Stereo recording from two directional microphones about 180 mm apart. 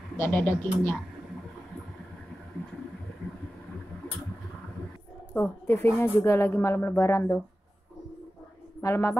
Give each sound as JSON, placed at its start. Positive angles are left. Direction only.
{"t": 0.2, "sound": "a woman's voice", "side_deg": 10}
{"t": 5.3, "sound": "a woman's voice", "side_deg": 15}
{"t": 8.8, "sound": "a woman's voice", "side_deg": 15}